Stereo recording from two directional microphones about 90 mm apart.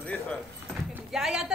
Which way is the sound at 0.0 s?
15° left (ahead or behind).